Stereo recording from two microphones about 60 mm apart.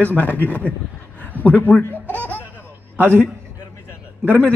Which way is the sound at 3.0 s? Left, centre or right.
Right.